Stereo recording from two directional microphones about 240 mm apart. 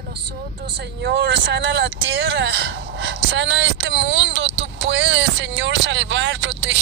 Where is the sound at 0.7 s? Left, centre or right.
Right.